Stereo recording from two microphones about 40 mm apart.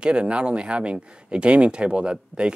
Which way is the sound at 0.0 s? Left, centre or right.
Right.